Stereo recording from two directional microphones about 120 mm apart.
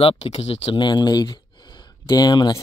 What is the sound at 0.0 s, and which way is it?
Speech, 55° left (ahead or behind).